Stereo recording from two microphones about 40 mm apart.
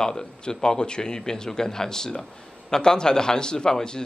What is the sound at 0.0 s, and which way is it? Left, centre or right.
A man's voice, centre.